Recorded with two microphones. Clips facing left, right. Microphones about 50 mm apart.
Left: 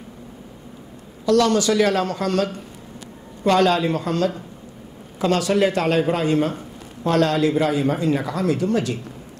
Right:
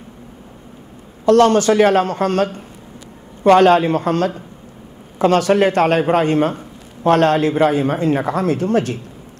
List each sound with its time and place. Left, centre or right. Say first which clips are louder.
1.2 s a man's voice: right 6 dB; right